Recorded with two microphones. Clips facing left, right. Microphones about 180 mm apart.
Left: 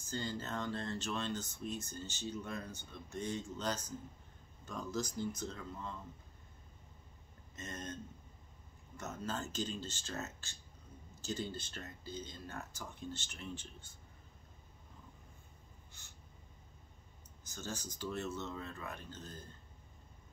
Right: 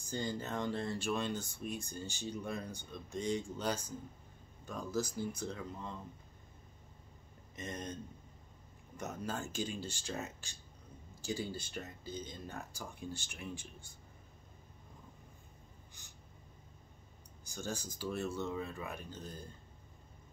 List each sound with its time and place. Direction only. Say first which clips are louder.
0.1 s speech: right 2 dB; 15° right (ahead or behind)
7.5 s speech: right 2 dB; 15° right (ahead or behind)
16.0 s a sound: right 2 dB; 15° right (ahead or behind)
17.5 s speech: right 3 dB; 15° right (ahead or behind)